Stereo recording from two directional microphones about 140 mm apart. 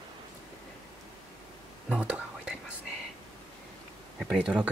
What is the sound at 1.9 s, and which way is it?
Whispering, 10° right (ahead or behind).